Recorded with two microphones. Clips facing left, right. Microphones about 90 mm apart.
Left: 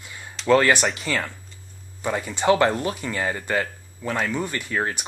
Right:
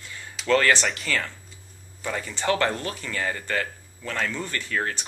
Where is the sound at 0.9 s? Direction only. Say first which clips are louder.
Left 2 dB; centre (ahead or behind).